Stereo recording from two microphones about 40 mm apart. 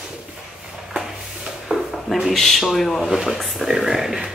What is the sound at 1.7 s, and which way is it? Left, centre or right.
Drawer open or close, centre.